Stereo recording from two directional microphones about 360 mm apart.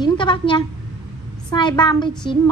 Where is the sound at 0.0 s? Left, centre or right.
Centre.